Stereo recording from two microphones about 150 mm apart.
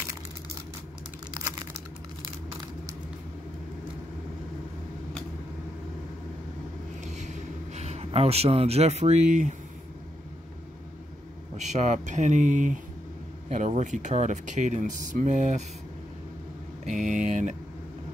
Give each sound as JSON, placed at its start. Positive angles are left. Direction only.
{"t": 7.1, "sound": "a sound", "side_deg": -50}
{"t": 11.5, "sound": "speech", "side_deg": -50}
{"t": 16.9, "sound": "speech", "side_deg": -55}